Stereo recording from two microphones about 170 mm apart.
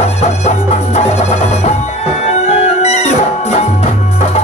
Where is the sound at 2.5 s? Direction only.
40° left (ahead or behind).